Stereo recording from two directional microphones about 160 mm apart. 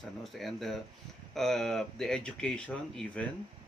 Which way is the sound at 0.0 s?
Centre (ahead or behind).